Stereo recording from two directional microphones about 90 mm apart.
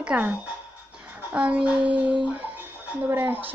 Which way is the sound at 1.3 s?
15° right (ahead or behind).